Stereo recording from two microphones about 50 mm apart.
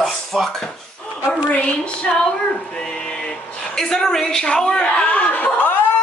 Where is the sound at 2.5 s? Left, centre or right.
Left.